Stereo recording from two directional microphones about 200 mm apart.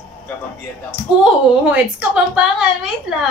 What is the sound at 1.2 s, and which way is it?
A woman's voice, 5° right (ahead or behind).